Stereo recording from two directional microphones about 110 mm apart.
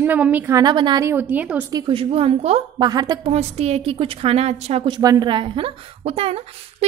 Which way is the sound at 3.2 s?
75° right (ahead or behind).